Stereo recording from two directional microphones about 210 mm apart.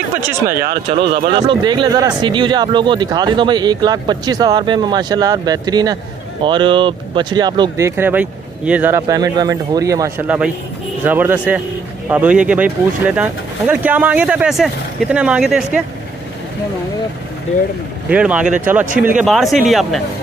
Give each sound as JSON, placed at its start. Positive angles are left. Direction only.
{"t": 0.5, "sound": "speech", "side_deg": -45}
{"t": 1.3, "sound": "speech", "side_deg": -20}
{"t": 9.0, "sound": "speech", "side_deg": -20}
{"t": 18.1, "sound": "speech", "side_deg": -5}